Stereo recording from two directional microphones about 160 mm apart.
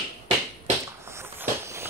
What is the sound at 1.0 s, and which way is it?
Walk, 15° right (ahead or behind).